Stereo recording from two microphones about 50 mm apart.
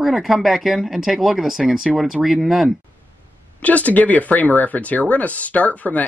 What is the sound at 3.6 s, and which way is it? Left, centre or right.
Speech, left.